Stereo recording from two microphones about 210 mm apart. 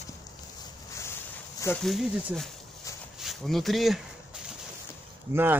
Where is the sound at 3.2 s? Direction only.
Centre (ahead or behind).